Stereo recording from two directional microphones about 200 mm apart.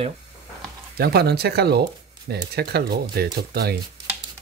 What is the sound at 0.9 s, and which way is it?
Speech, 50° right (ahead or behind).